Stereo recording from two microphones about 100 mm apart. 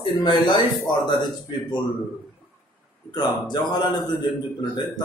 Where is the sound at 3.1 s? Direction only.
45° left (ahead or behind).